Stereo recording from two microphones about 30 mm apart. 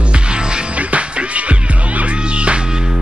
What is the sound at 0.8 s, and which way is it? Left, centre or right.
Music, right.